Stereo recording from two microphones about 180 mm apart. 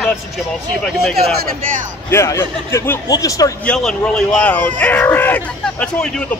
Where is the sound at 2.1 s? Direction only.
15° left (ahead or behind).